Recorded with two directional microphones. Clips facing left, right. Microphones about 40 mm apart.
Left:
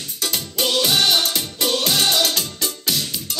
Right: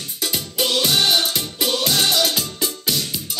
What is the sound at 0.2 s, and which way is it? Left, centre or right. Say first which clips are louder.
Music: even; centre.